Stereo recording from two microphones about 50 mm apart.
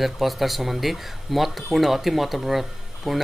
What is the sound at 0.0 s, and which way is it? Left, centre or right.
Speech, centre.